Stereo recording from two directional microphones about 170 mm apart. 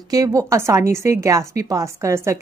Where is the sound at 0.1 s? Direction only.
20° right (ahead or behind).